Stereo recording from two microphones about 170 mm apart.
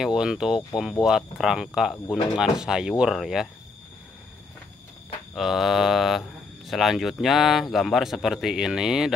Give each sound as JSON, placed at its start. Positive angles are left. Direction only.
{"t": 0.0, "sound": "speech", "side_deg": -5}
{"t": 5.3, "sound": "speech", "side_deg": 0}